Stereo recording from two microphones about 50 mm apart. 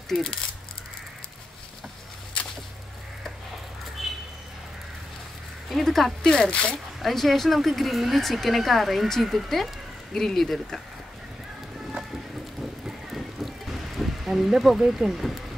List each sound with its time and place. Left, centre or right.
0.1 s speech: centre
4.0 s vehicle: centre
5.7 s speech: centre
6.5 s speech: left
7.0 s speech: centre
13.1 s music: centre